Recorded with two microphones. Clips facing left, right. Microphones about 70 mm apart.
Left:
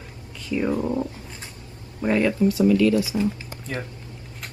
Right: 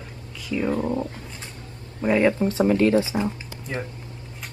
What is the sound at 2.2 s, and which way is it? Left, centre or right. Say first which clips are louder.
Speech: even; right.